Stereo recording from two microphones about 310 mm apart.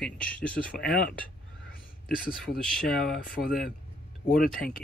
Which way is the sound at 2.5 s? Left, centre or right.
Centre.